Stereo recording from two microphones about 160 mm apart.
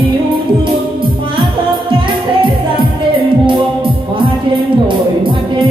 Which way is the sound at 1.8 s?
30° right (ahead or behind).